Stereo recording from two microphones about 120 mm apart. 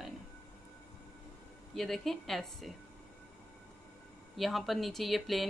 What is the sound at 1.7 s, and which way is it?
Speech, centre (ahead or behind).